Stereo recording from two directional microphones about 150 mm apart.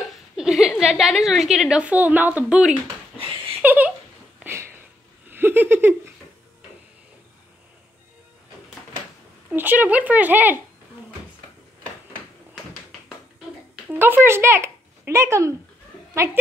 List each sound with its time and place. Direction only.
0.4 s a woman's voice: centre (ahead or behind)
3.6 s a sound: 10° right (ahead or behind)
9.5 s speech: 10° right (ahead or behind)
13.8 s speech: 15° right (ahead or behind)